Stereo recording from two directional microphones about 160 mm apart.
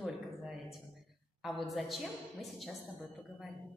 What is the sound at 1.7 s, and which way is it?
Speech, centre (ahead or behind).